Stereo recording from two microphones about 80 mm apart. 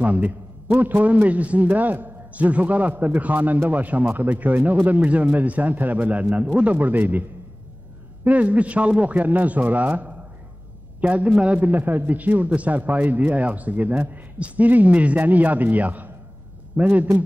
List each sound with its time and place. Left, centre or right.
0.0 s a man's voice: centre